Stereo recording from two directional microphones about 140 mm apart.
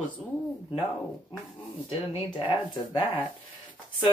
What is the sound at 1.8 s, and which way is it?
Speech, 40° left (ahead or behind).